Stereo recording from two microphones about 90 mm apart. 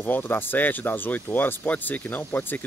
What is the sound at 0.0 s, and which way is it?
Speech, 20° left (ahead or behind).